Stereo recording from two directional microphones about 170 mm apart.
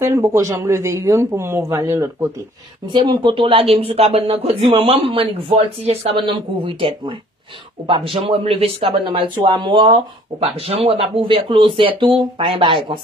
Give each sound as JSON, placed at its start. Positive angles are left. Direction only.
{"t": 0.0, "sound": "speech", "side_deg": -15}